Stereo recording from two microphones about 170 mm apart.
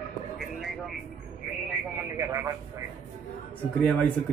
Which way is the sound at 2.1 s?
15° right (ahead or behind).